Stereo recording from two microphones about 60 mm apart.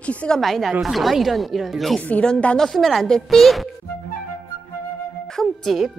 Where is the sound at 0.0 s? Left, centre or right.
Left.